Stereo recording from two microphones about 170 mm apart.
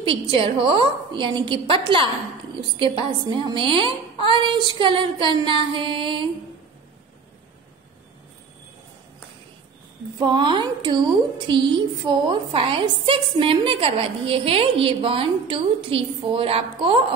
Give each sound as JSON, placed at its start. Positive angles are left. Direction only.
{"t": 0.0, "sound": "a woman's voice", "side_deg": -30}
{"t": 2.8, "sound": "a woman's voice", "side_deg": -30}
{"t": 10.1, "sound": "a woman's voice", "side_deg": -25}